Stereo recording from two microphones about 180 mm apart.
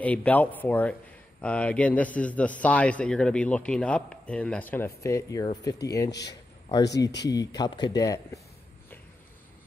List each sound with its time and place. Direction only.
0.0 s a man's voice: 10° left (ahead or behind)
7.2 s speech: 20° left (ahead or behind)